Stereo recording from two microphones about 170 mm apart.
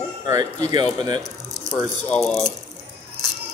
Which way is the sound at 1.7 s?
5° left (ahead or behind).